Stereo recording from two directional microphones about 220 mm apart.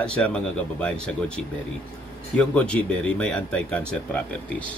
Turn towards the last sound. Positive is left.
turn(degrees=5)  # may be behind; listen again after turning